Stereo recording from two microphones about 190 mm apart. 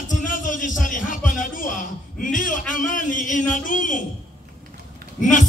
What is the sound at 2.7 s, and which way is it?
A man's voice, 45° left (ahead or behind).